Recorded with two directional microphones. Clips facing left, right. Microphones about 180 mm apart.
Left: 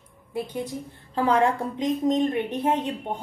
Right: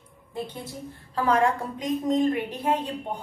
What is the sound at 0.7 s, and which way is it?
A woman's voice, 25° left (ahead or behind).